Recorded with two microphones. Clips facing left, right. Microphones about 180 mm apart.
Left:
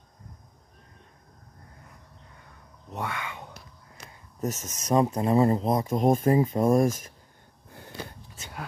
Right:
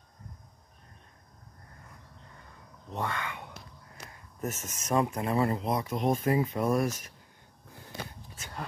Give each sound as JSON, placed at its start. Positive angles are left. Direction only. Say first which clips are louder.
{"t": 2.9, "sound": "speech", "louder": "even", "side_deg": 5}
{"t": 4.5, "sound": "speech", "louder": "left 4 dB", "side_deg": 40}